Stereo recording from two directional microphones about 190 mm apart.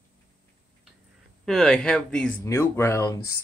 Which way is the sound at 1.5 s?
Centre (ahead or behind).